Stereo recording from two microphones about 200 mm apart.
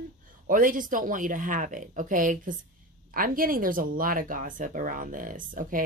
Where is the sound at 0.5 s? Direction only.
40° right (ahead or behind).